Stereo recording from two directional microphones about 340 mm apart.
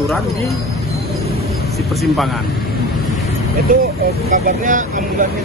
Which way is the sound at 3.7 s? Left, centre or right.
Right.